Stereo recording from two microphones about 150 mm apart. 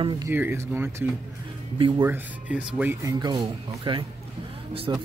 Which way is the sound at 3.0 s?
25° right (ahead or behind).